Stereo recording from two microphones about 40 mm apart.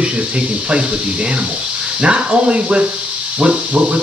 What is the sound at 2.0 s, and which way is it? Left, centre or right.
Speech, right.